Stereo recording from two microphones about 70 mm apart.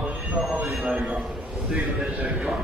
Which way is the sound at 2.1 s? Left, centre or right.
Centre.